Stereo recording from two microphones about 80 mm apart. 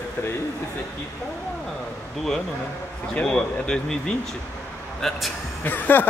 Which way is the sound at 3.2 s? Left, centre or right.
Centre.